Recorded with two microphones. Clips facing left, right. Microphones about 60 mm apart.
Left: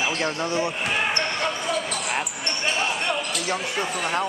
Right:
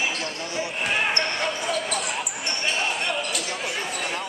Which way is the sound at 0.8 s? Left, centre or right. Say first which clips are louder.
Even; centre.